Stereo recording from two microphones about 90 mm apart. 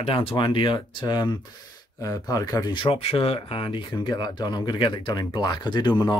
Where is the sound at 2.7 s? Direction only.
80° left.